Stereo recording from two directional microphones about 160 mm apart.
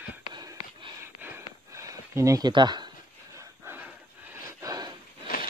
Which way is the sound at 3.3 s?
15° right (ahead or behind).